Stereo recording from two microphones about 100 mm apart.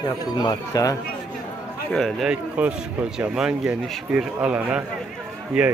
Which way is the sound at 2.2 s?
10° right (ahead or behind).